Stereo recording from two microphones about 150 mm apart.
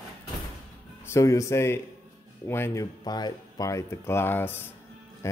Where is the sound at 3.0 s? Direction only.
25° left (ahead or behind).